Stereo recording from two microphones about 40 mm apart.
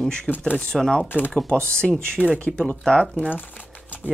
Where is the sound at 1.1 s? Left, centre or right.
Left.